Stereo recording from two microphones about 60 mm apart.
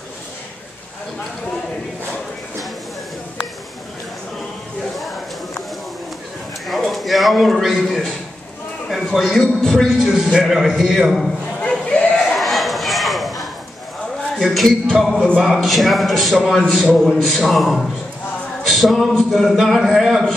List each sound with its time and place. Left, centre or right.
6.7 s a man's voice: centre
8.8 s a sound: centre
9.4 s speech: centre
10.1 s a man's voice: centre
11.8 s a sound: centre
12.4 s a sound: centre
14.4 s a man's voice: centre
15.1 s speech: centre
15.4 s a man's voice: centre